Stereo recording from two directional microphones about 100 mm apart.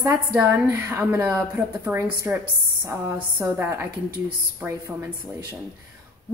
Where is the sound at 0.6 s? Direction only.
20° right (ahead or behind).